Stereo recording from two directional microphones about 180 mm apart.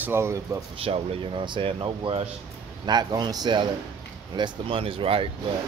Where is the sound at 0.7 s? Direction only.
30° right (ahead or behind).